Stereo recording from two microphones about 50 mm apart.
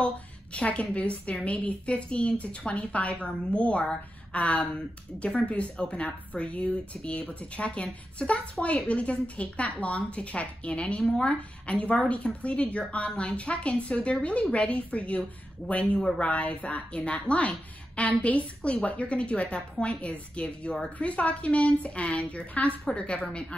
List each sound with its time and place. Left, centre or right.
0.0 s speech: left